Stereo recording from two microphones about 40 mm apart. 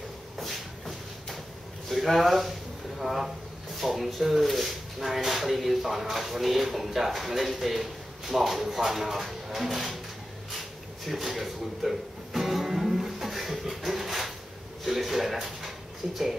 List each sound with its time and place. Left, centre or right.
0.4 s shuffle: centre
1.9 s speech: centre
11.1 s music: centre
14.9 s speech: centre